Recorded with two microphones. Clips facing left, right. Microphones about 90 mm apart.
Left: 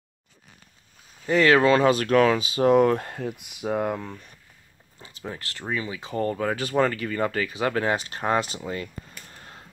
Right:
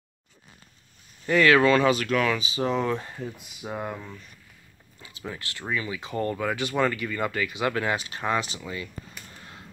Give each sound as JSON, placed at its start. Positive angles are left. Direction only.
{"t": 1.3, "sound": "speech", "side_deg": 30}
{"t": 3.6, "sound": "speech", "side_deg": 50}
{"t": 4.9, "sound": "speech", "side_deg": 35}
{"t": 9.3, "sound": "a sound", "side_deg": 35}